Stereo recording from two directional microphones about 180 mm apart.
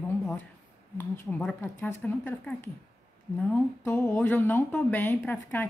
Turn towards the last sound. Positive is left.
turn(degrees=10)  # may be behind; listen again after turning